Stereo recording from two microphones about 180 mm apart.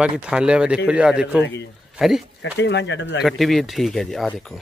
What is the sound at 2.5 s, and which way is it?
Speech, 75° left (ahead or behind).